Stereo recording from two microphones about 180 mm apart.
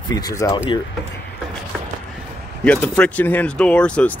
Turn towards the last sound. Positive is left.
turn(degrees=5)  # may be behind; listen again after turning